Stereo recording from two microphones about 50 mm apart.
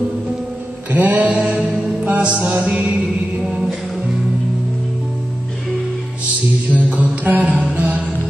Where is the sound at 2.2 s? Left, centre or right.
Centre.